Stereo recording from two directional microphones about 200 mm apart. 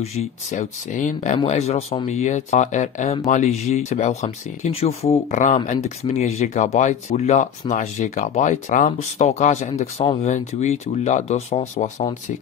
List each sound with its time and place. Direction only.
0.0 s speech: 35° left (ahead or behind)